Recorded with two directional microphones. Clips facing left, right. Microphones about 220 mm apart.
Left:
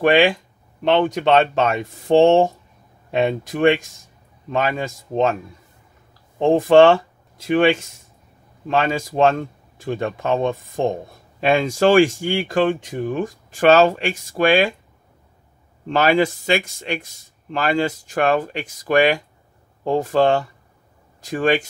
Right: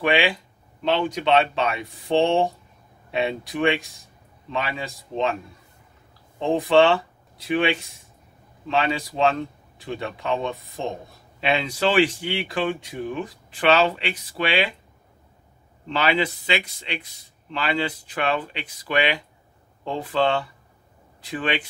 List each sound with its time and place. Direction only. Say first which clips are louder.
0.0 s speech: left 6 dB; 45° left (ahead or behind)
6.4 s speech: left 6 dB; 45° left (ahead or behind)
15.9 s speech: left 6 dB; 45° left (ahead or behind)